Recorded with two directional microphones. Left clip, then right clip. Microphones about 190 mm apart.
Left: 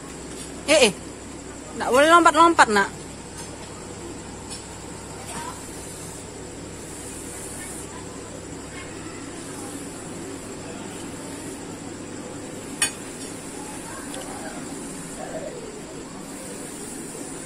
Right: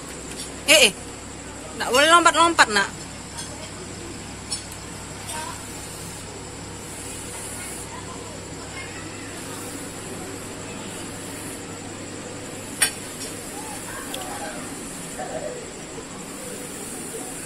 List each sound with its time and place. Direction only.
0.7 s a man's voice: 25° left (ahead or behind)